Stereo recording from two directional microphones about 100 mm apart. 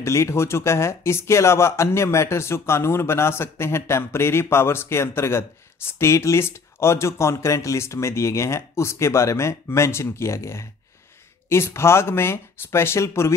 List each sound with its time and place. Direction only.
0.0 s speech: 30° left (ahead or behind)